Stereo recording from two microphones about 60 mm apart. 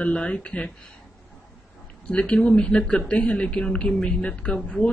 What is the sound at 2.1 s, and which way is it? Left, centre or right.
A man's voice, left.